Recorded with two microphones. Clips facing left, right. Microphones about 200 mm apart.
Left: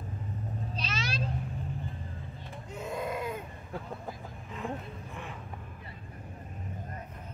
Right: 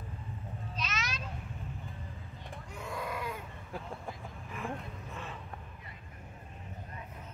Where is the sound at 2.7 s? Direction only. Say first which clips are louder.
Left 5 dB; 20° left (ahead or behind).